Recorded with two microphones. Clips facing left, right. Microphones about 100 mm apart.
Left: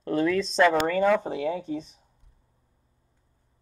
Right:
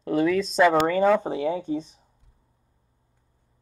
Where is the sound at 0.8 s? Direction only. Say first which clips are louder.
Right 2 dB; 20° right (ahead or behind).